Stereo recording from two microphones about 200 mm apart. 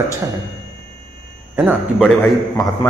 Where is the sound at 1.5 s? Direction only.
5° right (ahead or behind).